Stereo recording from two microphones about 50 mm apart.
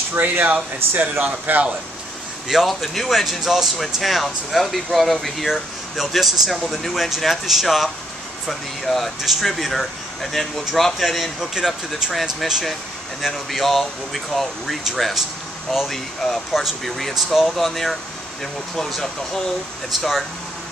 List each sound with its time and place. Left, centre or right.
0.1 s speech: right
2.4 s speech: centre
11.5 s speech: centre
12.1 s speech: centre